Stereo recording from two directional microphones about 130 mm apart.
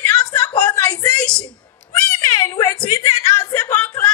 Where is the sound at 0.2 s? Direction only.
30° left (ahead or behind).